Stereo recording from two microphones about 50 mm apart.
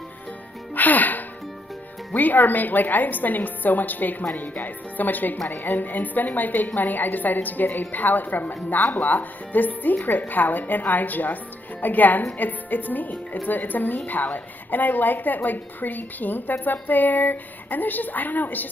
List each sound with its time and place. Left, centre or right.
0.7 s music: left
2.1 s a woman's voice: left